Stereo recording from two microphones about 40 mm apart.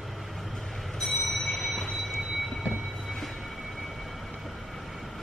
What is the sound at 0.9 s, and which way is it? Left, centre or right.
Train, centre.